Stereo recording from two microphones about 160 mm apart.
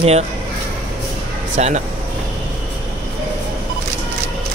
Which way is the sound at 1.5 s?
50° right (ahead or behind).